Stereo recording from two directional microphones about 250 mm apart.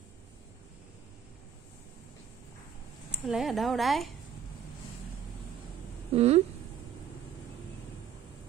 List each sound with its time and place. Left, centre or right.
3.1 s speech: centre
6.1 s speech: right